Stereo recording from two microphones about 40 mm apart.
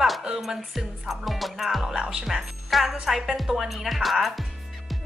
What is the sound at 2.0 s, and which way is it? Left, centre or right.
Speech, right.